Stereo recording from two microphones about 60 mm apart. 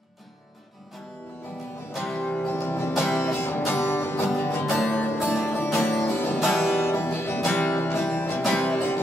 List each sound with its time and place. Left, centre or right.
1.9 s music: centre
2.2 s music: left
2.5 s music: left
2.9 s music: centre
3.3 s music: left
6.4 s music: centre
6.7 s music: left
8.5 s music: left